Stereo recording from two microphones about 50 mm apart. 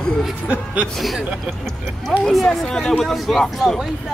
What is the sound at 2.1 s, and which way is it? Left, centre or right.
Speech, centre.